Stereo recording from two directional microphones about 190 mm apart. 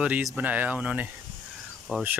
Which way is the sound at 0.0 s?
5° right (ahead or behind).